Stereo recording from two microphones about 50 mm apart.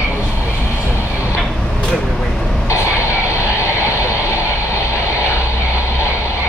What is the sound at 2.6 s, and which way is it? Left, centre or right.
Vehicle, left.